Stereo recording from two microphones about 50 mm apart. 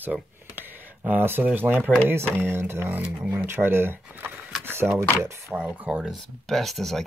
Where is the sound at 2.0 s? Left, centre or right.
Right.